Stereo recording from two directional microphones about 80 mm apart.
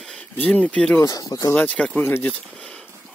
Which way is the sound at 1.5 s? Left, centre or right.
Centre.